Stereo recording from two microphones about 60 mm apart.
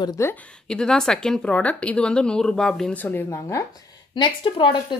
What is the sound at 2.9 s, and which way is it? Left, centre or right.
Speech, left.